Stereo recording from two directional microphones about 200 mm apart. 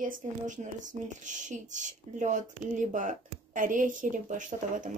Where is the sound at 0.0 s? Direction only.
40° right (ahead or behind).